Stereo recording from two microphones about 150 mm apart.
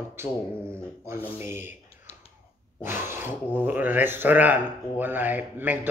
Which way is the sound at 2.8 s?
15° right (ahead or behind).